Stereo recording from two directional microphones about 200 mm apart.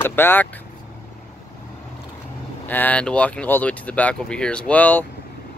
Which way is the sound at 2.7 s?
10° left (ahead or behind).